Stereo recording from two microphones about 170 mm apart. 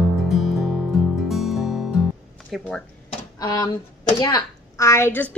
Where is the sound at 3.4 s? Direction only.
20° left (ahead or behind).